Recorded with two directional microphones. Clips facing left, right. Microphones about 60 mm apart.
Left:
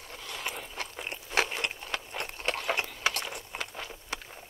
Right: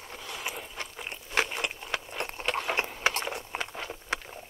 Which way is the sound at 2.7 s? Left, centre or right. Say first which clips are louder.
Right 3 dB; right.